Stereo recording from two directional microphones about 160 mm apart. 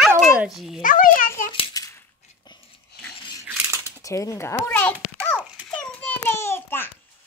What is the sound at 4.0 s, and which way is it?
Speech, 20° left (ahead or behind).